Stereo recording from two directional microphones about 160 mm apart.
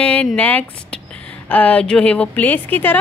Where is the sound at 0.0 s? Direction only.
10° left (ahead or behind).